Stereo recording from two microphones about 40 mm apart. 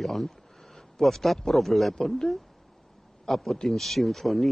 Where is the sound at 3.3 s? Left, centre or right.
Centre.